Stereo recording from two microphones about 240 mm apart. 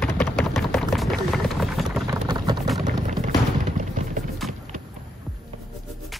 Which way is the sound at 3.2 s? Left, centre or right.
Right.